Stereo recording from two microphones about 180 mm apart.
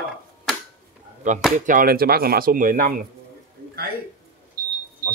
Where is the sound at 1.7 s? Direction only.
50° right (ahead or behind).